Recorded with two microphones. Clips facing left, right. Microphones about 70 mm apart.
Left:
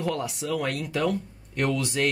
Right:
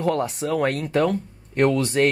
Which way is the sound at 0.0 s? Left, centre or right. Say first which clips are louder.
Right 6 dB; right.